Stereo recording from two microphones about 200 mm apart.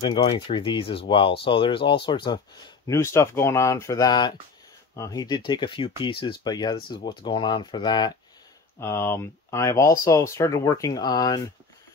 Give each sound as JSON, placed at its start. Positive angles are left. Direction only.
{"t": 0.0, "sound": "speech", "side_deg": 20}